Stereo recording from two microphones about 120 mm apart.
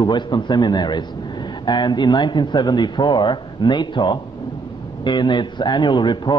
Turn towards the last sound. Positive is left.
turn(degrees=40)  # may be behind; listen again after turning